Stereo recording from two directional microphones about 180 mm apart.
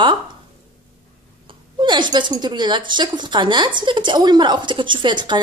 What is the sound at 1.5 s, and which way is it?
A woman's voice, 25° right (ahead or behind).